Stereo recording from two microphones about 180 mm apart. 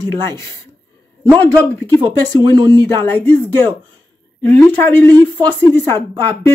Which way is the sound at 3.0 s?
10° left (ahead or behind).